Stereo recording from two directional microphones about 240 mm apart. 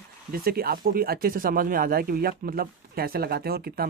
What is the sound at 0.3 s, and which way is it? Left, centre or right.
Speech, right.